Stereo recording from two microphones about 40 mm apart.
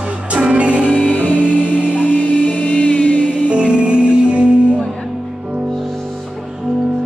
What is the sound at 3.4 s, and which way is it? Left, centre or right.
Music, right.